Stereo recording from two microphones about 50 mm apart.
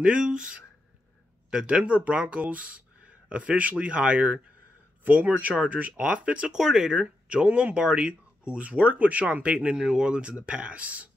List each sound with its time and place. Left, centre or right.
0.0 s speech: centre
6.5 s speech: centre